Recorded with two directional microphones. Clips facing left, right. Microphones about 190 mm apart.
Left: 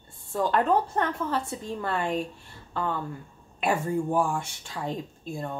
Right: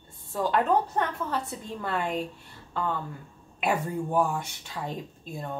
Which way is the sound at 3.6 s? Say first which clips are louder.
Left 2 dB; centre (ahead or behind).